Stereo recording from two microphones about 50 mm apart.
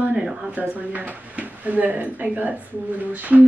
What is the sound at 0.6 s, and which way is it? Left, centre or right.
A woman's voice, right.